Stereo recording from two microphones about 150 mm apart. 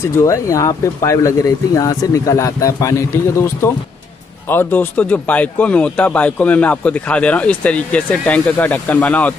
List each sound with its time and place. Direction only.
0.0 s speech: 20° left (ahead or behind)